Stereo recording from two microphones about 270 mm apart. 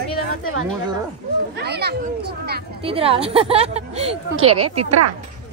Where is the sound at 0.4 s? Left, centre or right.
Left.